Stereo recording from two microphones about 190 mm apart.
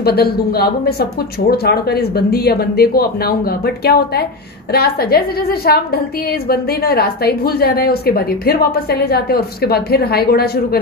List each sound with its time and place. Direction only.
0.0 s a woman's voice: 55° left (ahead or behind)